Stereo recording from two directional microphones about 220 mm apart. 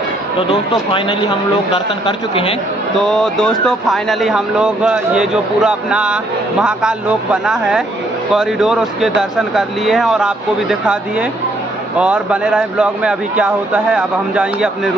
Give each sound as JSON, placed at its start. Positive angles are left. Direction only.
{"t": 0.5, "sound": "speech", "side_deg": 25}
{"t": 3.0, "sound": "speech", "side_deg": 0}